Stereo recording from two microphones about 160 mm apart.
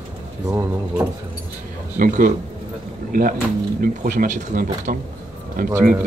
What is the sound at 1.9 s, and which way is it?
Speech, 55° right (ahead or behind).